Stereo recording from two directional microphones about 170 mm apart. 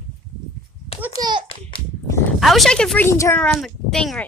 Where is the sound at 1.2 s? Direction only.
25° right (ahead or behind).